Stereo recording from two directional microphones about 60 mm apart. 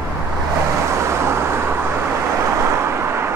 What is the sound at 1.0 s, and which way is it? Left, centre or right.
Vehicle, right.